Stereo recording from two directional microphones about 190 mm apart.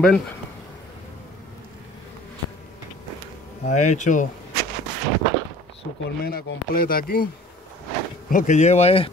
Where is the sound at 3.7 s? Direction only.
40° left (ahead or behind).